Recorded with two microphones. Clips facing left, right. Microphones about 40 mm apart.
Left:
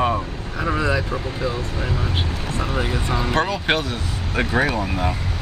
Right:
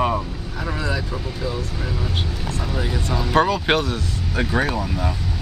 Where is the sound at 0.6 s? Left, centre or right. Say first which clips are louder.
Left 5 dB; left.